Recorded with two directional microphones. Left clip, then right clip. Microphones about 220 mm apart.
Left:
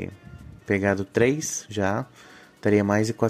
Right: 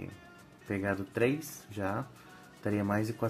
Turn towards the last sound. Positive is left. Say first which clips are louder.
# left 10 dB
turn(degrees=35)  # may be behind; listen again after turning